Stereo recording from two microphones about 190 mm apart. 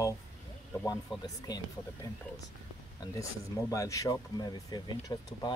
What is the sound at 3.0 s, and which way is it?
Speech, 15° left (ahead or behind).